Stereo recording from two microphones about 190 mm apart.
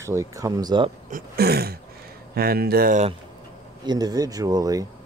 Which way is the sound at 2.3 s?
55° right (ahead or behind).